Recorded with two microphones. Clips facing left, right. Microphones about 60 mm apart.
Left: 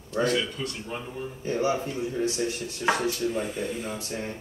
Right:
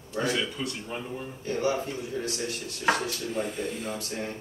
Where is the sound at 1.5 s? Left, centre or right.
Left.